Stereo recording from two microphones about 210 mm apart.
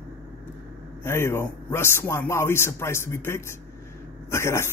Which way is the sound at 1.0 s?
10° left (ahead or behind).